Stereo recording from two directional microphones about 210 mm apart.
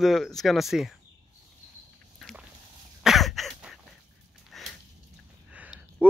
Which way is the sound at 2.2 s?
Centre (ahead or behind).